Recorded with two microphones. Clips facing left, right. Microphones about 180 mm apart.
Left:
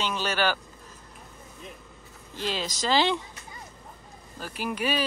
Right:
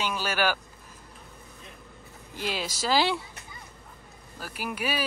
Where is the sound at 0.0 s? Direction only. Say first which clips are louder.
Left 1 dB; 10° right (ahead or behind).